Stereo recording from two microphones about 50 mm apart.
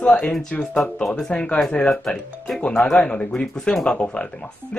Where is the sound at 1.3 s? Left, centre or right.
Left.